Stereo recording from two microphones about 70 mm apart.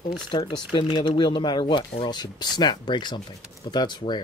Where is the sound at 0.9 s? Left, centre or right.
Left.